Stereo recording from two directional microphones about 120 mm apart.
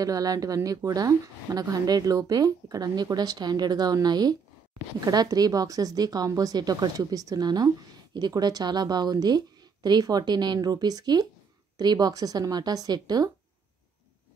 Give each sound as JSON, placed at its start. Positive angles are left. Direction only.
{"t": 0.0, "sound": "speech", "side_deg": -30}